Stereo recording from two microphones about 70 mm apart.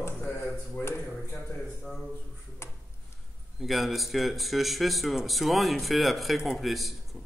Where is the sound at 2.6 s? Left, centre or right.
Left.